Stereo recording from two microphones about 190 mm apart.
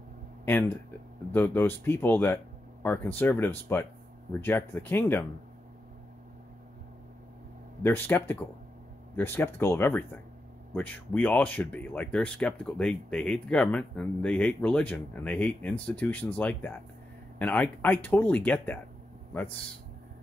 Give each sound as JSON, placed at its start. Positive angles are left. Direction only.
{"t": 0.5, "sound": "speech", "side_deg": 10}
{"t": 7.8, "sound": "speech", "side_deg": 10}